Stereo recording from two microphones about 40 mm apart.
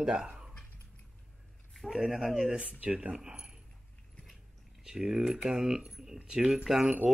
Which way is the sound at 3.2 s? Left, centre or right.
Right.